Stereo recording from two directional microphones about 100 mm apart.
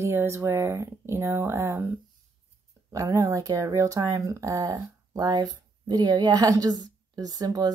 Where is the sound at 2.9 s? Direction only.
35° right (ahead or behind).